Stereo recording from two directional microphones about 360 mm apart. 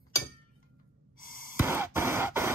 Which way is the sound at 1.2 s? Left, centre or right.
Left.